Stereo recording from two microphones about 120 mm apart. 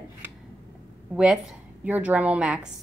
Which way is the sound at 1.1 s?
5° right (ahead or behind).